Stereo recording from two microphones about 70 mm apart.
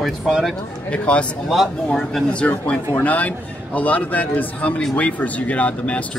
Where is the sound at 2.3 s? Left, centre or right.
Centre.